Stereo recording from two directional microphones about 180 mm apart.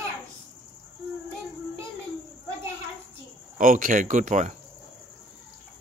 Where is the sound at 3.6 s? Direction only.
50° right (ahead or behind).